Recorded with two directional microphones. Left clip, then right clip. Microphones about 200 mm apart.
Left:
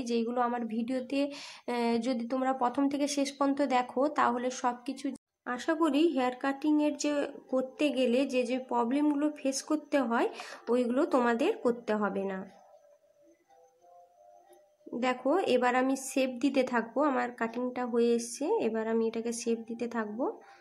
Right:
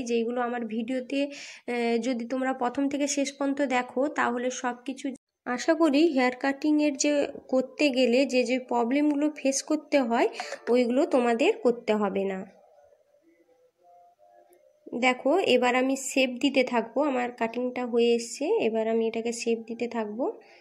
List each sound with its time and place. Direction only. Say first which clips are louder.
0.0 s speech: right 3 dB; 10° right (ahead or behind)
5.4 s speech: right 6 dB; 20° right (ahead or behind)
15.0 s speech: right 5 dB; 15° right (ahead or behind)